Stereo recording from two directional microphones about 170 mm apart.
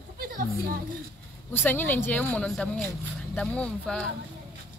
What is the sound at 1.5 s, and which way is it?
A woman's voice, 10° left (ahead or behind).